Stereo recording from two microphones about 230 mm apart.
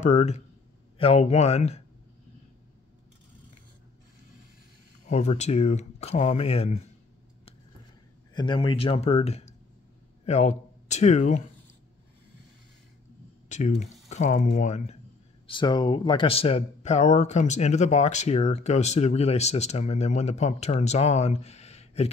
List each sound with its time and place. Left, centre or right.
0.0 s speech: left
5.0 s speech: left
8.4 s speech: left
13.5 s speech: left
15.4 s speech: left